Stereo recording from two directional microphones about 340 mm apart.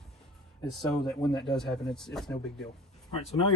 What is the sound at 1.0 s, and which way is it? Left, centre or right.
Speech, centre.